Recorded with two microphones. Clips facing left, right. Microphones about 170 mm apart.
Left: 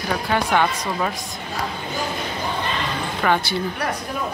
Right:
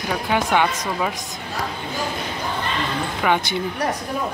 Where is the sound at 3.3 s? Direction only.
15° right (ahead or behind).